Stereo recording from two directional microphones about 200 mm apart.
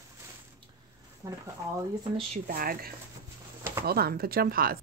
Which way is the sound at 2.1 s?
40° right (ahead or behind).